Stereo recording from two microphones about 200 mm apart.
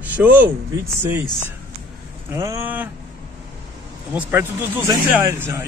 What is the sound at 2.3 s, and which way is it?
Speech, 15° right (ahead or behind).